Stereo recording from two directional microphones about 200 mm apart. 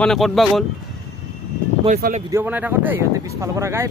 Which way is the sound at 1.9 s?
45° right (ahead or behind).